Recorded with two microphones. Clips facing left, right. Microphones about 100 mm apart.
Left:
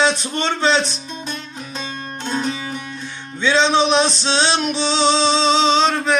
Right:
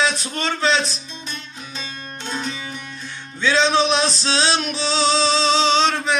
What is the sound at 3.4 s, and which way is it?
Music, 25° left (ahead or behind).